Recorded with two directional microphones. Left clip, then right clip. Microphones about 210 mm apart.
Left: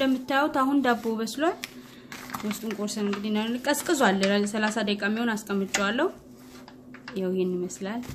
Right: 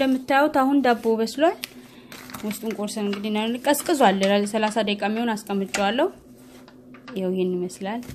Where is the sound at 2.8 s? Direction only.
30° right (ahead or behind).